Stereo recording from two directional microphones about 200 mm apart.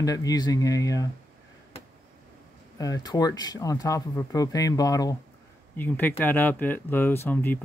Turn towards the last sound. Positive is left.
turn(degrees=10)  # may be behind; listen again after turning